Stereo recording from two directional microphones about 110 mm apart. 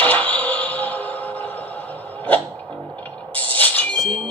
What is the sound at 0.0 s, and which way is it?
Music, 15° left (ahead or behind).